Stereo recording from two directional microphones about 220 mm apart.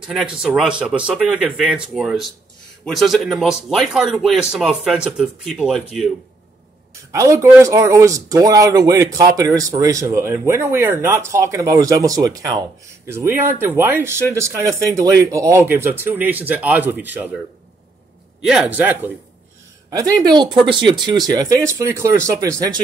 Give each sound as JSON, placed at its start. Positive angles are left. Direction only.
{"t": 0.0, "sound": "speech", "side_deg": 0}
{"t": 7.1, "sound": "speech", "side_deg": -15}
{"t": 18.4, "sound": "speech", "side_deg": 0}